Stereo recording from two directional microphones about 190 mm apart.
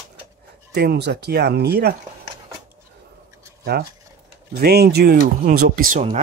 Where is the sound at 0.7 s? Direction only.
60° right (ahead or behind).